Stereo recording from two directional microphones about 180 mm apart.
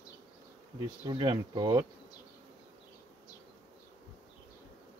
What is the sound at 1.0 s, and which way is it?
Speech, 25° right (ahead or behind).